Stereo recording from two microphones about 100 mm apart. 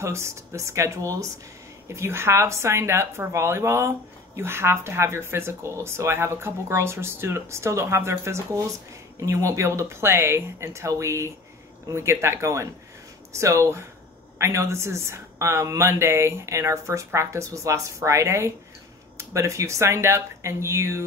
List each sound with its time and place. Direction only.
0.0 s speech: 30° right (ahead or behind)